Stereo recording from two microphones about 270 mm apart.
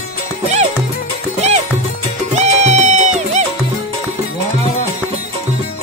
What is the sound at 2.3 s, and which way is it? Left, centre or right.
Music, right.